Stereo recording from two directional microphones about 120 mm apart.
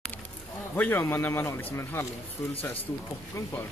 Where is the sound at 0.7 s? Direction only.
20° left (ahead or behind).